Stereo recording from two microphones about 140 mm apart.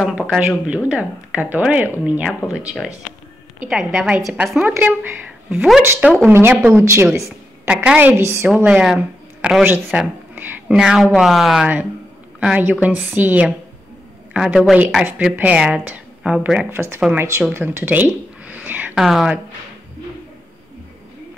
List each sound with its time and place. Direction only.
0.0 s speech: 5° right (ahead or behind)
3.6 s a woman's voice: 5° right (ahead or behind)
8.2 s a woman's voice: 20° right (ahead or behind)
8.5 s speech: 10° right (ahead or behind)